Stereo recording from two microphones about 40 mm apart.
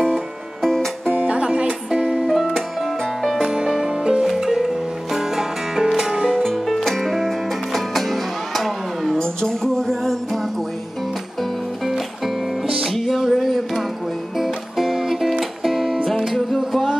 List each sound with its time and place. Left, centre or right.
0.0 s music: centre
1.2 s music: right
2.2 s music: centre
3.4 s music: centre
6.4 s music: centre
9.2 s music: centre
12.6 s music: centre